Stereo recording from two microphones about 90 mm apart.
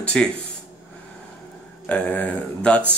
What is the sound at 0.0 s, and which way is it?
Speech, 10° left (ahead or behind).